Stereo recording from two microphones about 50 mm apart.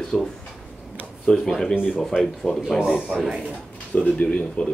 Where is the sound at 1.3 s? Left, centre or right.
Left.